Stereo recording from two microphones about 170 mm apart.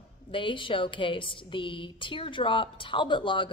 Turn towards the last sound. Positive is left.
turn(degrees=30)  # may be behind; listen again after turning